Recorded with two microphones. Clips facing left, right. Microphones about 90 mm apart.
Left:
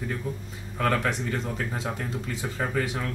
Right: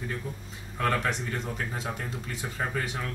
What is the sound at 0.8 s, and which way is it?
Speech, centre (ahead or behind).